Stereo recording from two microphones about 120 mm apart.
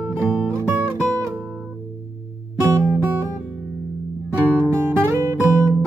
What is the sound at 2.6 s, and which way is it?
Music, 20° right (ahead or behind).